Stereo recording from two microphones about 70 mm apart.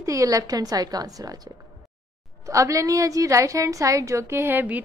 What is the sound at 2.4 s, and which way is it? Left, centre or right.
A woman's voice, right.